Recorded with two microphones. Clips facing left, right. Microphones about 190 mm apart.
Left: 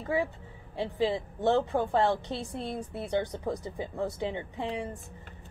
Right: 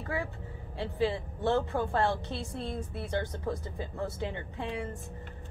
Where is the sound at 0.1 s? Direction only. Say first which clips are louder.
Left 7 dB; 20° left (ahead or behind).